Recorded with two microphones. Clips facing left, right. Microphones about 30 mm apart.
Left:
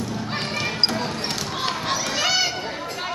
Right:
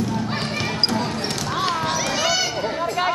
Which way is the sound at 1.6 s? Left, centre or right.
Centre.